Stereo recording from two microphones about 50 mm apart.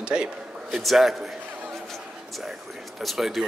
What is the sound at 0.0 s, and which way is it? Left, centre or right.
Speech, centre.